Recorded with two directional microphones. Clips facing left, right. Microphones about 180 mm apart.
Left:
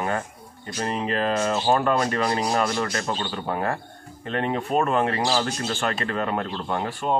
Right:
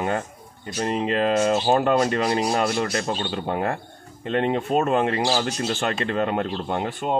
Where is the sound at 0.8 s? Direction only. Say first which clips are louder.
Right 3 dB; 20° right (ahead or behind).